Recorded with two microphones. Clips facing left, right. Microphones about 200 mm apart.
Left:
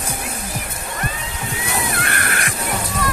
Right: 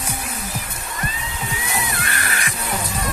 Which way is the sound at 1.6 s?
65° left (ahead or behind).